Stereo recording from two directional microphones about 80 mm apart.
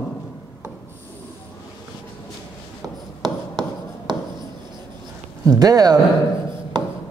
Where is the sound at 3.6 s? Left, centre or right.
Right.